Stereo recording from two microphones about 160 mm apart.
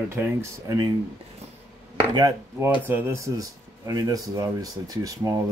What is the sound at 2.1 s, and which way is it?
Speech, 20° right (ahead or behind).